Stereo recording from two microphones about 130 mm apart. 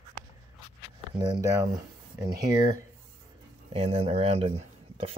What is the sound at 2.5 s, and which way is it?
Speech, 85° left.